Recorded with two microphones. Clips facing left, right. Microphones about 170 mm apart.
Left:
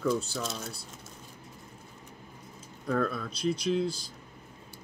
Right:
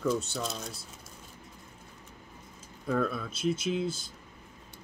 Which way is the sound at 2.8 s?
5° right (ahead or behind).